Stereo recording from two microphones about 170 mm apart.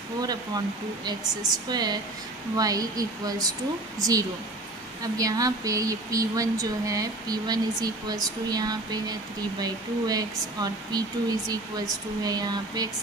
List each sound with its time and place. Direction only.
1.7 s speech: 25° right (ahead or behind)